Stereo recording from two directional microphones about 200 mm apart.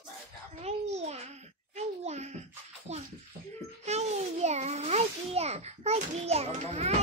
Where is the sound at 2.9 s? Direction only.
35° right (ahead or behind).